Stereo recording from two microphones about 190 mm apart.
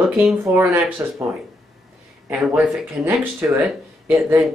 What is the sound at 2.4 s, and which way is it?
Speech, 5° right (ahead or behind).